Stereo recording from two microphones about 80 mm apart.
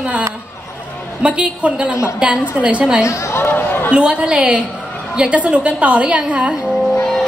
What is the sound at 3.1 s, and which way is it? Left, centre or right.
Speech, left.